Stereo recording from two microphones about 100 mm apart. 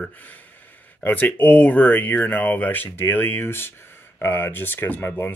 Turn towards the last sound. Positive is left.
turn(degrees=20)  # may be behind; listen again after turning